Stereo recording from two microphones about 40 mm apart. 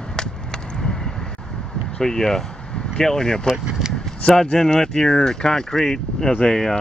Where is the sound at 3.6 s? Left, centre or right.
Centre.